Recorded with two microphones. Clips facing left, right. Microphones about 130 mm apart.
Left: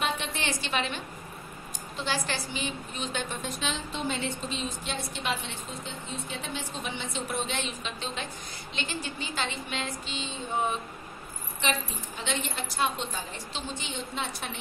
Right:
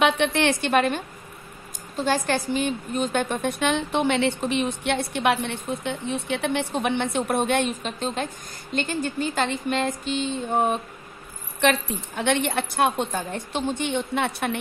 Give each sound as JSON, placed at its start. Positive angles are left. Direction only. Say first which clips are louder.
{"t": 0.0, "sound": "a woman's voice", "louder": "right 11 dB", "side_deg": -70}
{"t": 11.6, "sound": "a woman's voice", "louder": "right 9 dB", "side_deg": -65}